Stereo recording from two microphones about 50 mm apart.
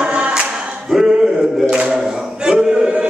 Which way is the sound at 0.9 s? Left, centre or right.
Centre.